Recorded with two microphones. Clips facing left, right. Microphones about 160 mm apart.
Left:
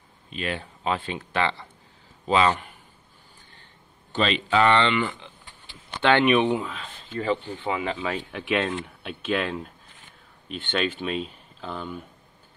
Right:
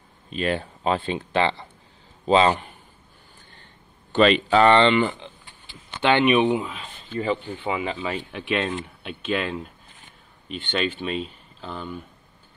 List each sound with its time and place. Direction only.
0.3 s a man's voice: 40° right (ahead or behind)
4.1 s speech: 60° right (ahead or behind)
4.5 s speech: 35° right (ahead or behind)
6.0 s speech: 5° right (ahead or behind)